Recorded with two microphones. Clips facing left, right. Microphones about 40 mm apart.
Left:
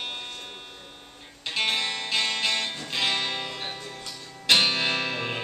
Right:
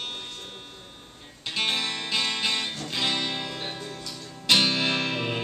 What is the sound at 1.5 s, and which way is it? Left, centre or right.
Music, centre.